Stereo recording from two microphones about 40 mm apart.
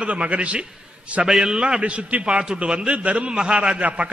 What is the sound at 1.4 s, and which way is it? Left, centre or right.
Speech, centre.